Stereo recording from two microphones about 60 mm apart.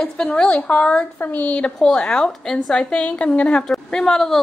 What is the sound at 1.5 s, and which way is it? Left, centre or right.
A woman's voice, centre.